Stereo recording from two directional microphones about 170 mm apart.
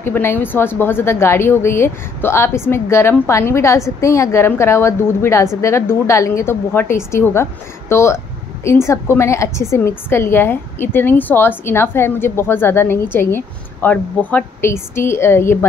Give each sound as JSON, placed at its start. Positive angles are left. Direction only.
{"t": 0.0, "sound": "a woman's voice", "side_deg": 15}